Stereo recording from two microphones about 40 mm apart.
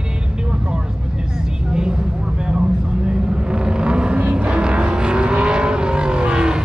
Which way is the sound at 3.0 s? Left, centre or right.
Right.